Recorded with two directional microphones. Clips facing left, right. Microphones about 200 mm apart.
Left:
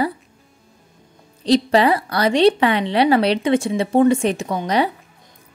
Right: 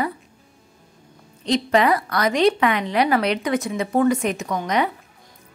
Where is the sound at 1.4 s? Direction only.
35° left (ahead or behind).